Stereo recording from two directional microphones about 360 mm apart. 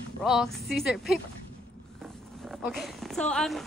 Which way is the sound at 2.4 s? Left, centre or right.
Centre.